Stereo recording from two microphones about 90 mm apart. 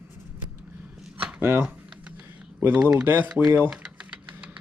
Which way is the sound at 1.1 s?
20° right (ahead or behind).